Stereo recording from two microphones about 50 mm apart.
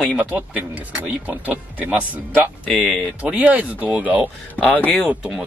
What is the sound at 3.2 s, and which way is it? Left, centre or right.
Speech, right.